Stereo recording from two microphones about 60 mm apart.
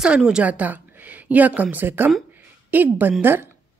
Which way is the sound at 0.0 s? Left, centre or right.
Centre.